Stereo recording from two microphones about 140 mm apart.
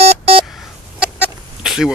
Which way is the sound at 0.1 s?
45° right (ahead or behind).